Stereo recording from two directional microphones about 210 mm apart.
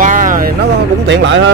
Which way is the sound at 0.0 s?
40° right (ahead or behind).